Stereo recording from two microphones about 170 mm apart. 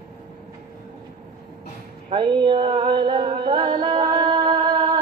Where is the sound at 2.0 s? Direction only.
30° right (ahead or behind).